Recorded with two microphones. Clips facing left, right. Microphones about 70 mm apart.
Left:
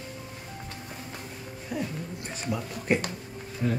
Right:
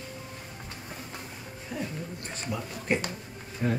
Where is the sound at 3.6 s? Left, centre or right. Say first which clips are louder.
Even; right.